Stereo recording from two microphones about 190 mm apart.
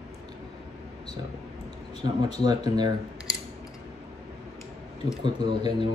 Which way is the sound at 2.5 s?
20° right (ahead or behind).